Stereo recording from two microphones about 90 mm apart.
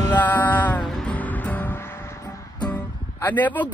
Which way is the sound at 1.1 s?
15° left (ahead or behind).